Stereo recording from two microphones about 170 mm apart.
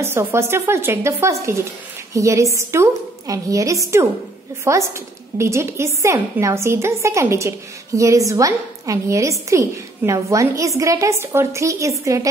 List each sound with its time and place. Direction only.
0.0 s a woman's voice: 15° right (ahead or behind)